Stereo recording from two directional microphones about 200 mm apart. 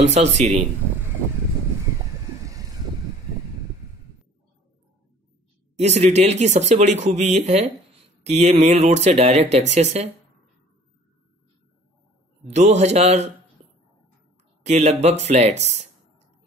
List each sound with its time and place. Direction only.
0.0 s speech: 35° right (ahead or behind)
5.8 s speech: 35° right (ahead or behind)
12.4 s speech: 35° right (ahead or behind)
14.6 s speech: 35° right (ahead or behind)